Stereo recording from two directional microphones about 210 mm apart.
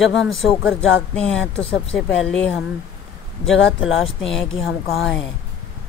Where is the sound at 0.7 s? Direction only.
5° left (ahead or behind).